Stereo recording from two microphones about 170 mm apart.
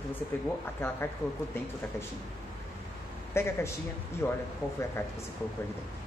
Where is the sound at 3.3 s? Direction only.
15° left (ahead or behind).